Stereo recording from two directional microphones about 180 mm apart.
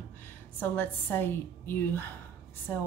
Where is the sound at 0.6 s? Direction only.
10° left (ahead or behind).